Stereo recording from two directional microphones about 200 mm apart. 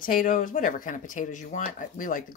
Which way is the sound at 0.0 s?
45° left (ahead or behind).